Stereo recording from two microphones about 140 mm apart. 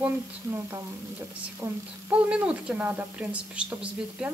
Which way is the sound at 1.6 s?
25° right (ahead or behind).